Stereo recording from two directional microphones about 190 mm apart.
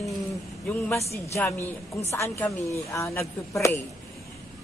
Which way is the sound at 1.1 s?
15° left (ahead or behind).